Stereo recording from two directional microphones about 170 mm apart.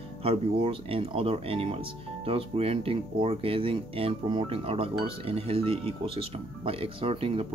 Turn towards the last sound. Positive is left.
turn(degrees=-35)  # may be behind; listen again after turning